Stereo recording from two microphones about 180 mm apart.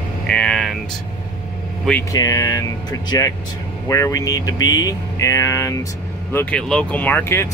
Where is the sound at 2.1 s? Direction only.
20° left (ahead or behind).